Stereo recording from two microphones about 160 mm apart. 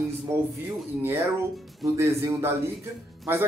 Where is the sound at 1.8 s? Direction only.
20° right (ahead or behind).